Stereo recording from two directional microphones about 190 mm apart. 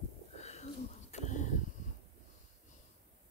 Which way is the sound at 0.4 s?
35° left (ahead or behind).